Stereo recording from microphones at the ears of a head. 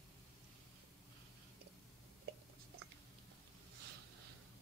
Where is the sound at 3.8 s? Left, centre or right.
Right.